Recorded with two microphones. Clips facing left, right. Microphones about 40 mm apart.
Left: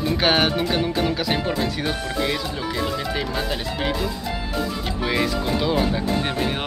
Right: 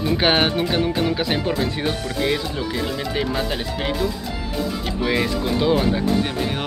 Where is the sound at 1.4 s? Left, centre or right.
Centre.